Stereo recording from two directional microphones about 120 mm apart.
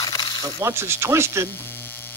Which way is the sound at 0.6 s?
25° right (ahead or behind).